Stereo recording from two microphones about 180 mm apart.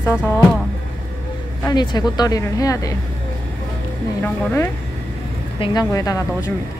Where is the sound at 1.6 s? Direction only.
25° left (ahead or behind).